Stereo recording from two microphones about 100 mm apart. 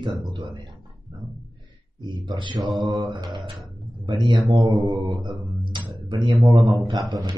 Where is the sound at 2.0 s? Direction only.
50° right (ahead or behind).